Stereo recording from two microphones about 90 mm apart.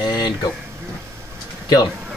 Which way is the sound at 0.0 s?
45° left (ahead or behind).